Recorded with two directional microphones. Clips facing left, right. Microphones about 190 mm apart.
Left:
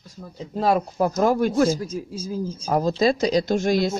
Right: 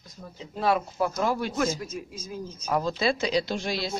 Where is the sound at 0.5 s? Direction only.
40° left (ahead or behind).